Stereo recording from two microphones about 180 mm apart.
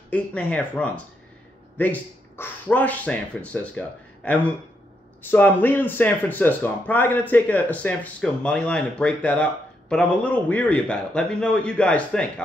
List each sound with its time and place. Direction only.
0.1 s speech: 10° left (ahead or behind)